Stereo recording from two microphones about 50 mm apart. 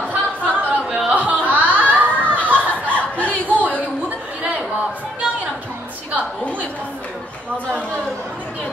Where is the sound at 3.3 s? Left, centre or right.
Right.